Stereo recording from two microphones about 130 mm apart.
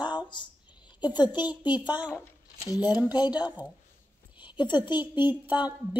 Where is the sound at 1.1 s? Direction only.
35° left (ahead or behind).